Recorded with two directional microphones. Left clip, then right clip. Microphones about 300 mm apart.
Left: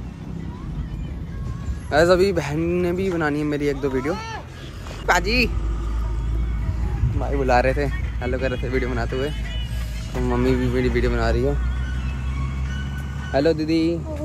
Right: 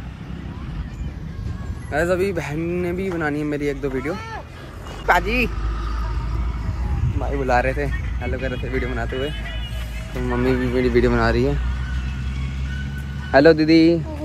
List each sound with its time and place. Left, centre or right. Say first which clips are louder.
1.9 s speech: left 4 dB; centre
7.2 s speech: left 1 dB; centre
10.2 s speech: even; centre
10.8 s speech: right 4 dB; centre
13.3 s speech: right 7 dB; centre